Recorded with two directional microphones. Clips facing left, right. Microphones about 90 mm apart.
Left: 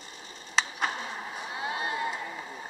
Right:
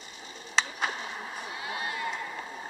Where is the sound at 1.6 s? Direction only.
25° left (ahead or behind).